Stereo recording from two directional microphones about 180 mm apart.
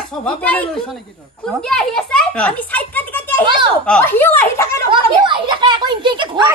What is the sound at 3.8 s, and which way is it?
Speech, 10° left (ahead or behind).